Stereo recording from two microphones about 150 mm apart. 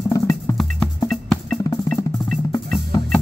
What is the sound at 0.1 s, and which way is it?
Music, 20° left (ahead or behind).